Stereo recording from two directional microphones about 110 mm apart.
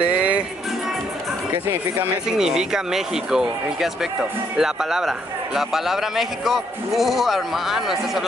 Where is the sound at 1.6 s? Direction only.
20° right (ahead or behind).